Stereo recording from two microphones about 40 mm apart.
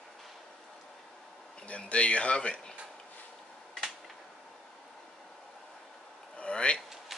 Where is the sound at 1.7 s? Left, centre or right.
Left.